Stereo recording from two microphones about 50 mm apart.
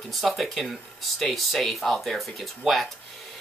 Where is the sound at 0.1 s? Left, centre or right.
Centre.